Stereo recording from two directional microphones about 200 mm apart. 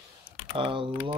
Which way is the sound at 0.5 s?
25° right (ahead or behind).